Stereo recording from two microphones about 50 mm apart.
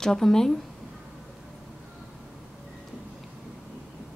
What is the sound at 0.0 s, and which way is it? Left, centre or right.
Speech, centre.